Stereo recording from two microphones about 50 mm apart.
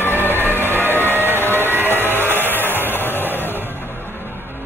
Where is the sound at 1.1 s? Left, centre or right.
Right.